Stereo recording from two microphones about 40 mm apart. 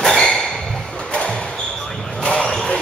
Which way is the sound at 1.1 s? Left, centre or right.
Left.